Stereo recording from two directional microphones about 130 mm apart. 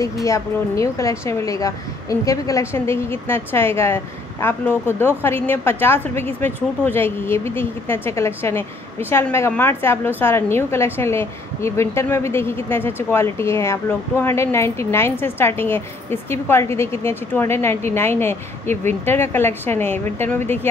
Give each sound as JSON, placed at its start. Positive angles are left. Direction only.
{"t": 0.0, "sound": "a woman's voice", "side_deg": 25}